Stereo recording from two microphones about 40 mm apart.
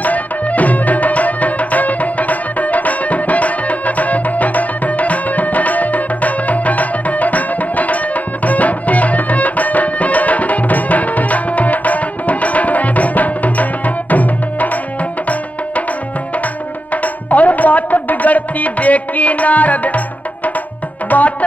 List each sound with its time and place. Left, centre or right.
0.0 s music: left
16.9 s music: left
21.1 s music: left